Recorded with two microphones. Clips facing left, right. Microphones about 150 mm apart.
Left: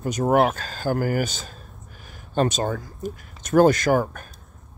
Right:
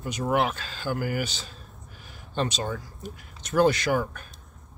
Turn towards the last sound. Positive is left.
turn(degrees=45)  # may be behind; listen again after turning